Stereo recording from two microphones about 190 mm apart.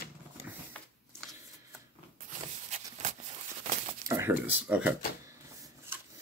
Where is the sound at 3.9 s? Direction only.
15° right (ahead or behind).